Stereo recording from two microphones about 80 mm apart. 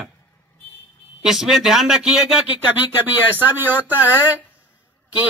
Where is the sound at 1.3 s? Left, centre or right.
Centre.